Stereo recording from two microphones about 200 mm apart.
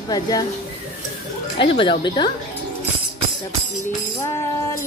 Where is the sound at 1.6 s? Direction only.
25° left (ahead or behind).